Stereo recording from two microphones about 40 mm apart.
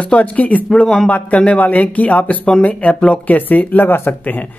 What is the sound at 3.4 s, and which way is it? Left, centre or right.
Speech, left.